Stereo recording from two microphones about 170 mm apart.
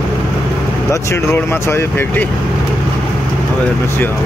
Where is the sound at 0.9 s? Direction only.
15° left (ahead or behind).